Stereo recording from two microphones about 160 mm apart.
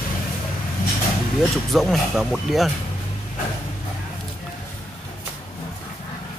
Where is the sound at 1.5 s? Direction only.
Centre (ahead or behind).